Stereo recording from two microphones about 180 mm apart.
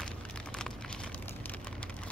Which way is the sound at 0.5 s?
5° left (ahead or behind).